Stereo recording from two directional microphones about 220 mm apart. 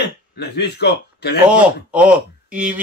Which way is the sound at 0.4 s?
50° left (ahead or behind).